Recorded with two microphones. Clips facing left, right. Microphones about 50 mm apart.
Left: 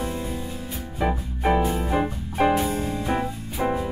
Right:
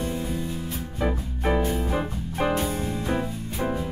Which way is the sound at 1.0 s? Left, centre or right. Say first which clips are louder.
Left 3 dB; centre.